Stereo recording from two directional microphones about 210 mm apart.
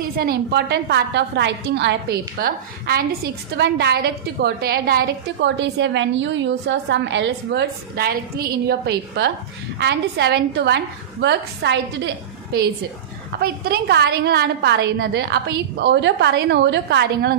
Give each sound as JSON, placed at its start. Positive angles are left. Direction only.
{"t": 0.0, "sound": "a woman's voice", "side_deg": -45}
{"t": 13.4, "sound": "a woman's voice", "side_deg": -50}